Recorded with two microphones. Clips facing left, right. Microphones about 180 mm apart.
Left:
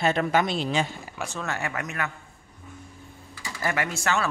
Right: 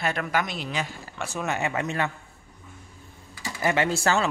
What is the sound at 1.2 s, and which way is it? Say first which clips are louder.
Speech: right 3 dB; 15° right (ahead or behind).